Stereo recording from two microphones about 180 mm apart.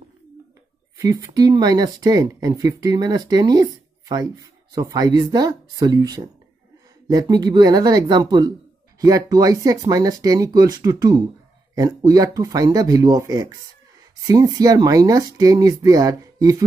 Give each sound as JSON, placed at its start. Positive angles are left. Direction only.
{"t": 0.9, "sound": "speech", "side_deg": -20}